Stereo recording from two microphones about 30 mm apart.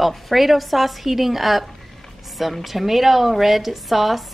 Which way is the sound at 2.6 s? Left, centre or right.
Centre.